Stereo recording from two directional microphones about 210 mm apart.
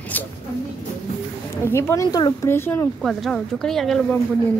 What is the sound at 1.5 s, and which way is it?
A woman's voice, 10° left (ahead or behind).